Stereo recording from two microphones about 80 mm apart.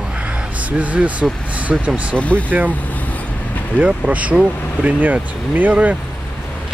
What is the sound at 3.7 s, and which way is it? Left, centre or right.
Speech, centre.